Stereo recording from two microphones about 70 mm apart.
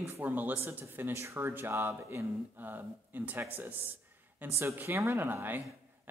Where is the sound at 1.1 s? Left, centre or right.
Right.